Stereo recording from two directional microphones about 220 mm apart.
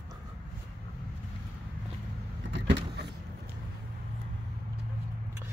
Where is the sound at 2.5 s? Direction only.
55° right (ahead or behind).